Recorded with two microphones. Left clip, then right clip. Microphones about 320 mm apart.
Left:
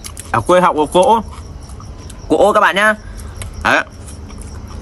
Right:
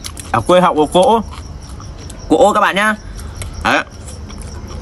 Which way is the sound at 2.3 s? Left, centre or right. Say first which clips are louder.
Even; centre.